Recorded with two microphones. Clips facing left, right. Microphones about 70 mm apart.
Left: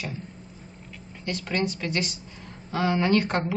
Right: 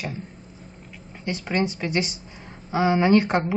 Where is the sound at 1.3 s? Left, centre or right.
Centre.